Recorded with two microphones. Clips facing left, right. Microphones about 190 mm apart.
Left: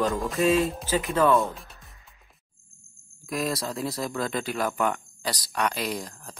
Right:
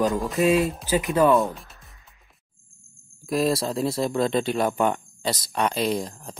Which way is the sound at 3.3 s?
30° right (ahead or behind).